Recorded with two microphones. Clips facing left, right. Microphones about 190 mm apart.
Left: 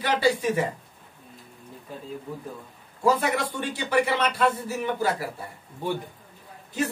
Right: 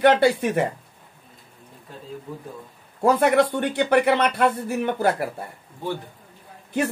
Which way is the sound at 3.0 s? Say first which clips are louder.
Right 6 dB; 60° right (ahead or behind).